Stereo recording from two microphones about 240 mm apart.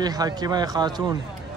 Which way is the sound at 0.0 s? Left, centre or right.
Centre.